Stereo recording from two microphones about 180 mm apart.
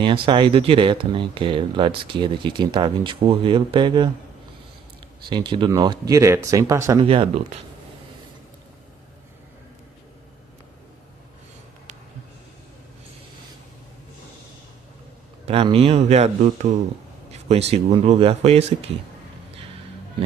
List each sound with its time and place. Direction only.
0.0 s speech: 30° right (ahead or behind)
5.3 s speech: 25° right (ahead or behind)
7.0 s speech: 30° right (ahead or behind)
15.4 s speech: 30° right (ahead or behind)
17.3 s speech: 35° right (ahead or behind)